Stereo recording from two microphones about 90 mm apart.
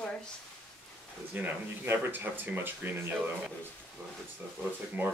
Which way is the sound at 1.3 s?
20° right (ahead or behind).